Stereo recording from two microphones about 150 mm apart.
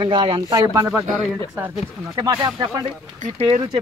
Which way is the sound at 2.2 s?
30° right (ahead or behind).